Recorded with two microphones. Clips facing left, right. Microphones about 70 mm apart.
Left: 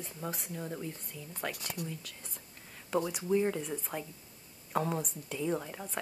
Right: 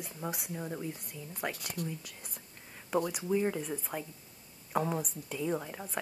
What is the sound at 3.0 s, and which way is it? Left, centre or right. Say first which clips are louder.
A woman's voice: left 1 dB; centre.